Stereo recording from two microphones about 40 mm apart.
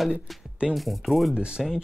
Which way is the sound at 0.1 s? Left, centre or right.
Right.